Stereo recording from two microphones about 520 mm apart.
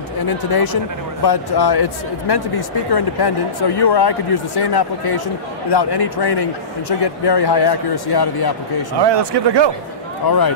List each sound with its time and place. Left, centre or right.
0.3 s speech: left
9.0 s speech: right
10.2 s speech: left